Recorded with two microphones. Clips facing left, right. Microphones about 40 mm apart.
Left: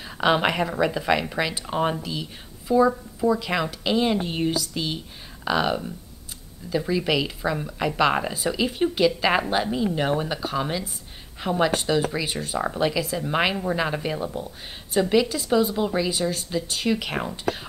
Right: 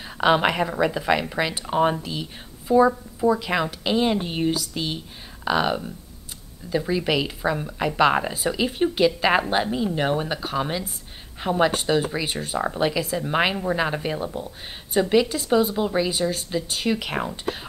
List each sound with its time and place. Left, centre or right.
0.0 s speech: centre
3.2 s speech: centre